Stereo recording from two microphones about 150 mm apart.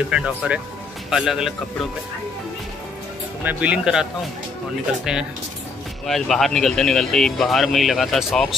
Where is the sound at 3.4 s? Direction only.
10° right (ahead or behind).